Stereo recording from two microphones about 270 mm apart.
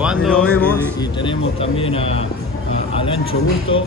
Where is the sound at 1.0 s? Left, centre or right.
Centre.